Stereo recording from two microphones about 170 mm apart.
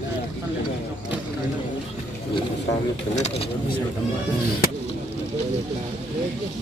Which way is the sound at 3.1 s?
40° left (ahead or behind).